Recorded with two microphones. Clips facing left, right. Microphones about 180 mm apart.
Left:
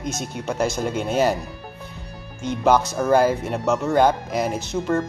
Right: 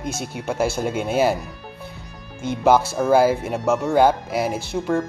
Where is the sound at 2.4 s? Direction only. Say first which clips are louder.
Right 1 dB; 10° right (ahead or behind).